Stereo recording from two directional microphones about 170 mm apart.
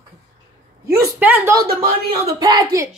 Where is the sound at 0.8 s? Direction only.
15° right (ahead or behind).